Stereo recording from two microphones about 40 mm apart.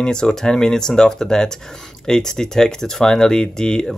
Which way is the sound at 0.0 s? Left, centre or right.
Centre.